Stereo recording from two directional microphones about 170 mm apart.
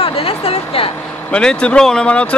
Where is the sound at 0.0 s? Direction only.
35° left (ahead or behind).